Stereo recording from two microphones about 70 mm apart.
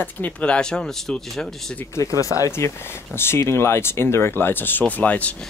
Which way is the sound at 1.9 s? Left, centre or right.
Left.